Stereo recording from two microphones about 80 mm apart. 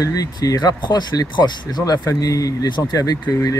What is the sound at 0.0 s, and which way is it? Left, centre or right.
Speech, left.